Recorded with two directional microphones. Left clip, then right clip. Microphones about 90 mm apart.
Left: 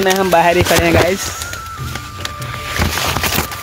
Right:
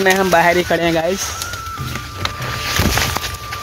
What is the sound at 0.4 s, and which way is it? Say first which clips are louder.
Speech: left 2 dB; 45° left (ahead or behind).